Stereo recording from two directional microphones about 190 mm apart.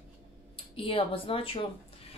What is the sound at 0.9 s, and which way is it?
Speech, 30° left (ahead or behind).